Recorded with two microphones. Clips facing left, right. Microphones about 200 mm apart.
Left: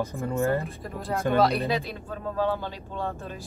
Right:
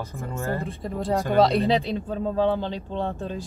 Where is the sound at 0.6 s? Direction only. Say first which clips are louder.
Right 5 dB; 30° right (ahead or behind).